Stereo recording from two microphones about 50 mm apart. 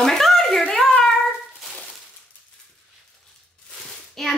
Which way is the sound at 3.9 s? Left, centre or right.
Centre.